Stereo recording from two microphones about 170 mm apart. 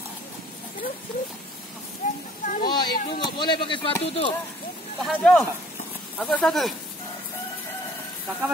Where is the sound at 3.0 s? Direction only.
30° left (ahead or behind).